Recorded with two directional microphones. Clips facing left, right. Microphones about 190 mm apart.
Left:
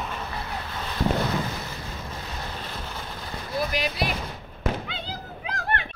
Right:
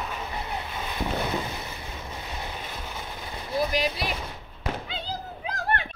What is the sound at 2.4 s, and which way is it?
Vehicle, 15° right (ahead or behind).